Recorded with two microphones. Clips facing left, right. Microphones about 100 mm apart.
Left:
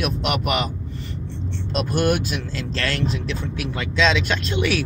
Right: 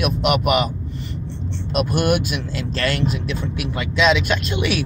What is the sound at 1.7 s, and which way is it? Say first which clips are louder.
Speech: right 2 dB; 15° right (ahead or behind).